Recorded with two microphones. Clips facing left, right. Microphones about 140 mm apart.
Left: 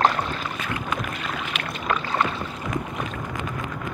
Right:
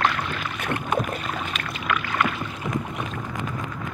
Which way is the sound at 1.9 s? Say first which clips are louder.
Left 1 dB; 30° left (ahead or behind).